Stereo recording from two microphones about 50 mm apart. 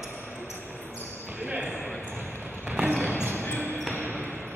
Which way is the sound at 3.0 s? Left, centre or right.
Right.